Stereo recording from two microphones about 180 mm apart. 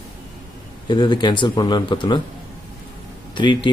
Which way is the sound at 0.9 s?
25° left (ahead or behind).